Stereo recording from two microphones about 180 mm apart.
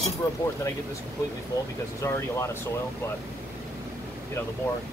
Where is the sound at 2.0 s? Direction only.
15° left (ahead or behind).